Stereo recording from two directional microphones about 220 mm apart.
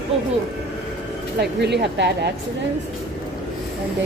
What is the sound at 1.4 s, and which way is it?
Speech, 50° right (ahead or behind).